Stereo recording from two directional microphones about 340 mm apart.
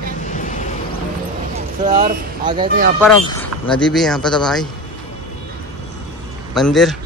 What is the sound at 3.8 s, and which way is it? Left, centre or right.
Speech, centre.